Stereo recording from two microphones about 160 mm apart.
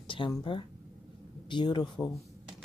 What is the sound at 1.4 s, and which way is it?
Speech, 30° left (ahead or behind).